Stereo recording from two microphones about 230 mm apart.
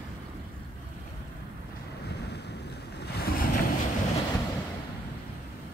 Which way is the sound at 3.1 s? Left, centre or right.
Left.